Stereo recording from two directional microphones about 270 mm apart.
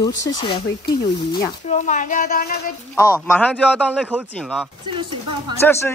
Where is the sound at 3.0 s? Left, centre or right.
Centre.